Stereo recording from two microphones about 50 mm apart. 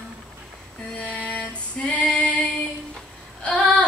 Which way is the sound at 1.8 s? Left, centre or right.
Left.